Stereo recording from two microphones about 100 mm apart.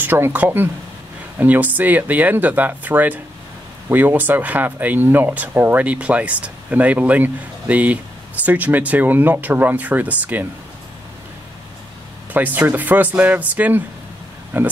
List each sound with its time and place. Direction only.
0.0 s speech: 20° right (ahead or behind)
12.4 s speech: 20° right (ahead or behind)